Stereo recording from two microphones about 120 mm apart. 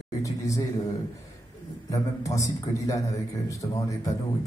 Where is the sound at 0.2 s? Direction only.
25° left (ahead or behind).